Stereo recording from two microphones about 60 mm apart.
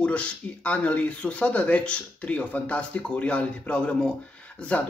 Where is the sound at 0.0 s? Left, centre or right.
Left.